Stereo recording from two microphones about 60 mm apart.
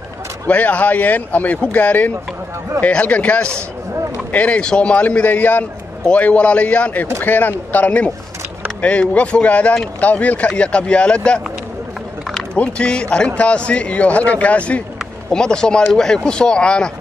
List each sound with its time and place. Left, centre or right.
0.5 s speech: left
9.1 s speech: left
12.5 s speech: centre